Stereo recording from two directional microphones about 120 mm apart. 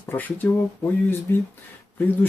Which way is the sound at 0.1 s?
15° left (ahead or behind).